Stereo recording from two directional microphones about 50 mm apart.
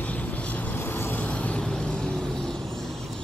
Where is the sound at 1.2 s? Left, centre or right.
Left.